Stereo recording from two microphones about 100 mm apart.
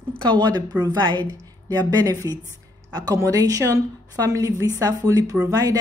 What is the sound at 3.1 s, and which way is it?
Speech, 35° right (ahead or behind).